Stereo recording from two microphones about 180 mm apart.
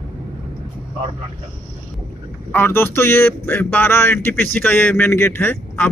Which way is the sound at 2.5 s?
10° left (ahead or behind).